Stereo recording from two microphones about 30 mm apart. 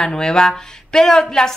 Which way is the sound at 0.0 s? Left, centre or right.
Left.